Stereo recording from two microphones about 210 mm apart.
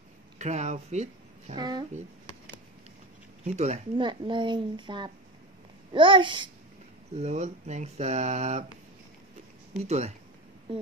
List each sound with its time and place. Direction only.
0.4 s speech: 35° right (ahead or behind)
1.6 s speech: 20° right (ahead or behind)
3.4 s speech: 35° right (ahead or behind)
9.8 s speech: 30° right (ahead or behind)